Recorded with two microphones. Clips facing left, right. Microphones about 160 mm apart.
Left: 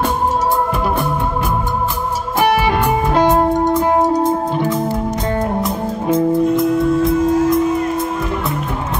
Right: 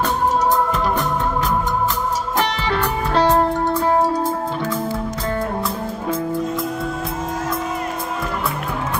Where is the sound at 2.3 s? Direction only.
10° left (ahead or behind).